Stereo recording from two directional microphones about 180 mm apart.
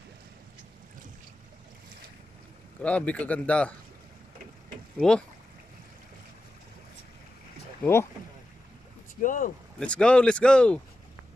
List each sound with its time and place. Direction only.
2.8 s a man's voice: 5° left (ahead or behind)
4.9 s speech: 5° left (ahead or behind)
7.8 s a man's voice: 15° left (ahead or behind)
9.2 s speech: 45° left (ahead or behind)
9.8 s speech: 5° left (ahead or behind)